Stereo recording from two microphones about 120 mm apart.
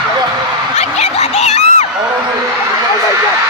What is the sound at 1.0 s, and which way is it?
Snicker, 70° left (ahead or behind).